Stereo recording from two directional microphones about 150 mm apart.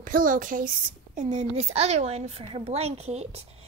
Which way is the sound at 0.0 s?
65° right (ahead or behind).